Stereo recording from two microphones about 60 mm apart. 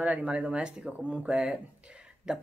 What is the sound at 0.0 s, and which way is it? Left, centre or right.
Speech, right.